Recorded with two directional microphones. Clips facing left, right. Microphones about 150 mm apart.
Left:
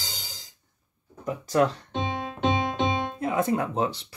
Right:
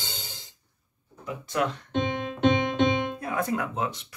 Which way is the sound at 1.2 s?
35° left (ahead or behind).